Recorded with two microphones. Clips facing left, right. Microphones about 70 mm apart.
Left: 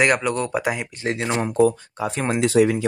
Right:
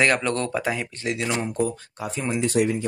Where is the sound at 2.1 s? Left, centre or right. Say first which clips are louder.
Left 5 dB; left.